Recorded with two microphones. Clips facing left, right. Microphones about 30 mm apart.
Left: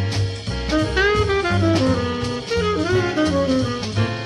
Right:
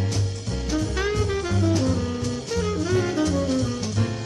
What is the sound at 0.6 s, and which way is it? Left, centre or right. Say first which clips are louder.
Saxophone: left 7 dB; left.